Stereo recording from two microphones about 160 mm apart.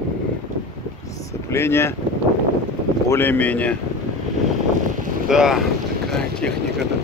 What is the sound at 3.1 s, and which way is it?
Speech, 10° left (ahead or behind).